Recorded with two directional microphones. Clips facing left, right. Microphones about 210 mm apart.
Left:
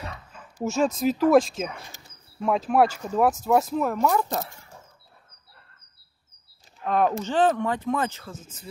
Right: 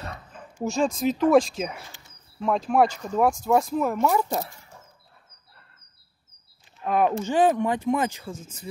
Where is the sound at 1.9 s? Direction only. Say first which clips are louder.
Left 2 dB; 40° left (ahead or behind).